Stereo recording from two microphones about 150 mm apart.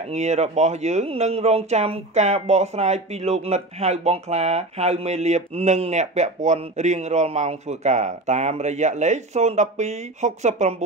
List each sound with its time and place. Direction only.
0.0 s speech: 50° right (ahead or behind)